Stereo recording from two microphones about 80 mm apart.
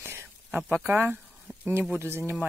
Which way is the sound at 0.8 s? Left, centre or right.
Right.